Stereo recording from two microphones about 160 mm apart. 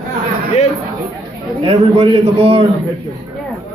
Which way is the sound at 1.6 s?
35° right (ahead or behind).